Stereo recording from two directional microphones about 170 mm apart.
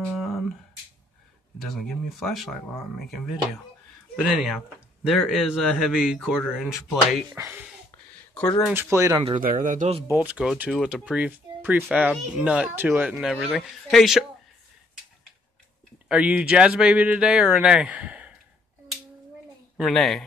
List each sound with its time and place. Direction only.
1.6 s speech: centre (ahead or behind)
4.2 s speech: 5° right (ahead or behind)
7.3 s speech: 15° right (ahead or behind)
8.4 s speech: 5° left (ahead or behind)
8.7 s speech: 15° right (ahead or behind)
9.2 s speech: 50° right (ahead or behind)
10.0 s speech: 10° right (ahead or behind)
16.1 s speech: 5° right (ahead or behind)
19.8 s speech: centre (ahead or behind)